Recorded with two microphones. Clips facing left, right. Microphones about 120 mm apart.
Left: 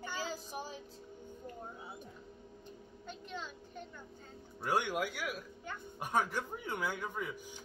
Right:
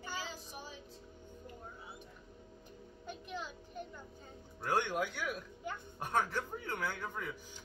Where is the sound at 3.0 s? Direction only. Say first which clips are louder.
Right 1 dB; 10° right (ahead or behind).